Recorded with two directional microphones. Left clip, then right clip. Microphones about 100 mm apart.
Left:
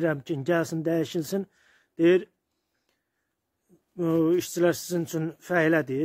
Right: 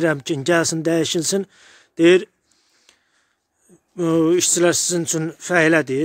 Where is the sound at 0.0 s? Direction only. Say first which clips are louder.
Right 7 dB; 35° right (ahead or behind).